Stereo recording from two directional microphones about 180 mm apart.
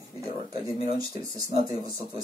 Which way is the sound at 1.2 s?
20° right (ahead or behind).